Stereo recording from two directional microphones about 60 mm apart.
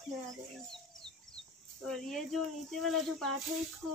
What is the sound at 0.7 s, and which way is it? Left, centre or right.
Speech, centre.